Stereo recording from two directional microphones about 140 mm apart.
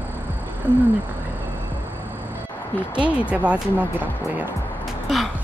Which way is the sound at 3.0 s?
10° right (ahead or behind).